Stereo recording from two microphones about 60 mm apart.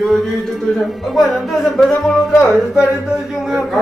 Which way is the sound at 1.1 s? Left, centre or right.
Centre.